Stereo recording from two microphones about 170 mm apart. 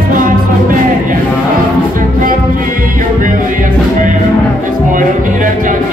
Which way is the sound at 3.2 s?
50° right (ahead or behind).